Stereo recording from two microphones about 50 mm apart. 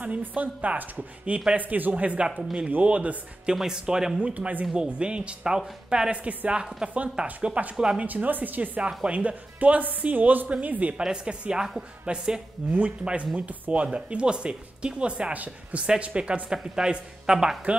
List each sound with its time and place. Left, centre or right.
0.3 s speech: right
1.6 s speech: right
3.5 s speech: centre
4.2 s speech: right
6.2 s speech: right
6.8 s speech: centre
7.4 s speech: right
7.7 s speech: centre
8.0 s speech: right
11.0 s speech: centre